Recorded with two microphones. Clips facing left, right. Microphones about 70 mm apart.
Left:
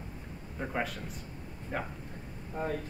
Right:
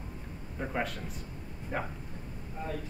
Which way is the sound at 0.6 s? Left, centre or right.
Centre.